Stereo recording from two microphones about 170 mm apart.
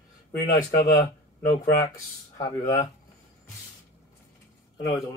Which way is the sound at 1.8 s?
20° left (ahead or behind).